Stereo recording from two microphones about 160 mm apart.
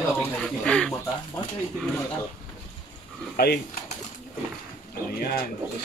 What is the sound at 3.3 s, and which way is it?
Speech, 75° left (ahead or behind).